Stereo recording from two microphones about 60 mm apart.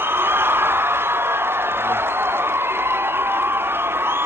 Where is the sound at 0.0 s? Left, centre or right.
Right.